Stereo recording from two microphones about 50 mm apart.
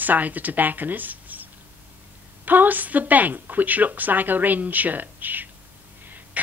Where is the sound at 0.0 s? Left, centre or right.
Right.